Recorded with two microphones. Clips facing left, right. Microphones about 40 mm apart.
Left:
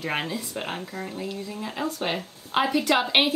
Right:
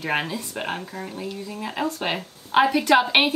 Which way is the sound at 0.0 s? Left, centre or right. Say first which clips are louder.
Right 3 dB; centre.